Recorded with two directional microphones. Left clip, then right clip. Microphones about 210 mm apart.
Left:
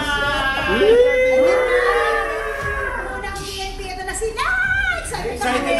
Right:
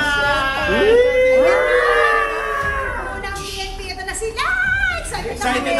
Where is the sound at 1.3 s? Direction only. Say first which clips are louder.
Right 2 dB; centre (ahead or behind).